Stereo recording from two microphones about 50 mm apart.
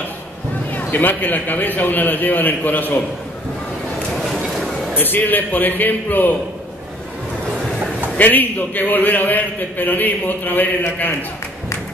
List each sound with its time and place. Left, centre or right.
0.7 s a man's voice: left
4.9 s a man's voice: left
8.2 s a man's voice: left